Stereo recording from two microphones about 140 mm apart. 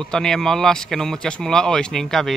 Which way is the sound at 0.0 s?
5° left (ahead or behind).